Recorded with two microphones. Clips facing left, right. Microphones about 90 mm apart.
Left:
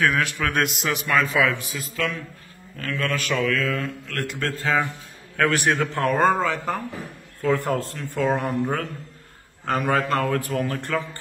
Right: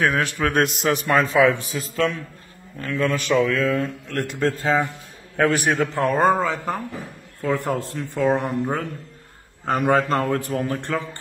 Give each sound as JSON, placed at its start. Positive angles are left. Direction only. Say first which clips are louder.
{"t": 0.0, "sound": "a man's voice", "louder": "right 1 dB", "side_deg": -30}
{"t": 2.8, "sound": "speech", "louder": "right 3 dB", "side_deg": -20}
{"t": 5.4, "sound": "a man's voice", "louder": "right 2 dB", "side_deg": -10}
{"t": 6.4, "sound": "a man's voice", "louder": "even", "side_deg": -15}
{"t": 9.8, "sound": "speech", "louder": "right 3 dB", "side_deg": -30}